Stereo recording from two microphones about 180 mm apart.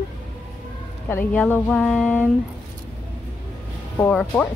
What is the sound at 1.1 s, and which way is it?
Speech, 10° left (ahead or behind).